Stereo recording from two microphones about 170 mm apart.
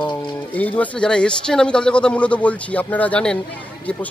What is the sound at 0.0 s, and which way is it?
Pigeon, 30° left (ahead or behind).